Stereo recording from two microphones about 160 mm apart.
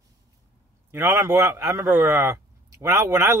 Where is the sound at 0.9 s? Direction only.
20° right (ahead or behind).